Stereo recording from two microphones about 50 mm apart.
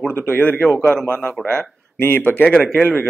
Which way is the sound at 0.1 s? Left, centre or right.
Left.